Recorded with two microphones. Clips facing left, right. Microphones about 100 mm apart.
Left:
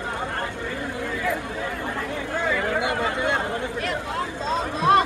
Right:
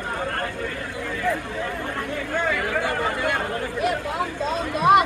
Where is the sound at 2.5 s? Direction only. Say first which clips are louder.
Even; 15° left (ahead or behind).